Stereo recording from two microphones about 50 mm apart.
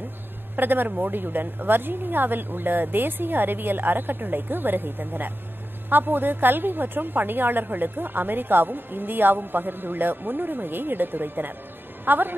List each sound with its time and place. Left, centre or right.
0.6 s a woman's voice: right